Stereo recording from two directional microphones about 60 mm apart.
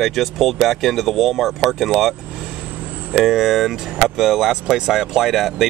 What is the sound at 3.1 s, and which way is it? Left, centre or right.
Speech, centre.